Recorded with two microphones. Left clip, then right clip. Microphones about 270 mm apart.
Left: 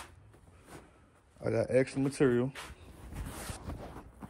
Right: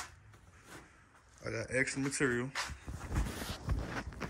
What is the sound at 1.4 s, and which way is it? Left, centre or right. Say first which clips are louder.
Speech: left 6 dB; centre.